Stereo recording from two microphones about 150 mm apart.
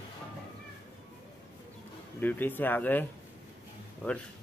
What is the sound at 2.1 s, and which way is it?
Speech, 10° left (ahead or behind).